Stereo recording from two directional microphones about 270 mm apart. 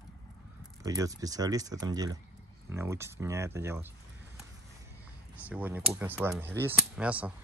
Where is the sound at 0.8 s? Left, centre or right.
Centre.